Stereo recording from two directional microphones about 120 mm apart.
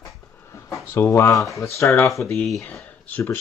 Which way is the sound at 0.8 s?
20° left (ahead or behind).